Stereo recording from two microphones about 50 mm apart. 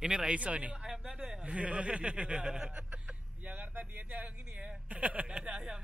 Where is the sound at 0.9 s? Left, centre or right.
Centre.